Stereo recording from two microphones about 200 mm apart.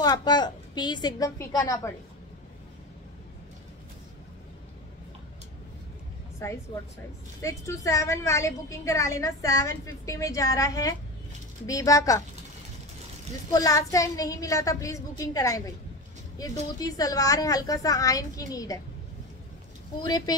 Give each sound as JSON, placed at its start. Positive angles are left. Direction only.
{"t": 0.0, "sound": "a woman's voice", "side_deg": 20}
{"t": 6.4, "sound": "a woman's voice", "side_deg": 15}
{"t": 13.5, "sound": "a woman's voice", "side_deg": 15}
{"t": 20.0, "sound": "a woman's voice", "side_deg": 20}